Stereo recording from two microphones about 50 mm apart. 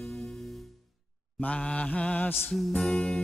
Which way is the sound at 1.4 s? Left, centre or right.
Left.